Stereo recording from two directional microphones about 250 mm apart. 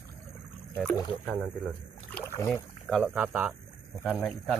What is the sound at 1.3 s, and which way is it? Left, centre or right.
Speech, centre.